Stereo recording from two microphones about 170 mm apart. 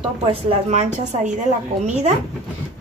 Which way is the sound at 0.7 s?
40° right (ahead or behind).